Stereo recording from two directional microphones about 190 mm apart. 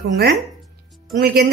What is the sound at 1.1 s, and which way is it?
Speech, 50° right (ahead or behind).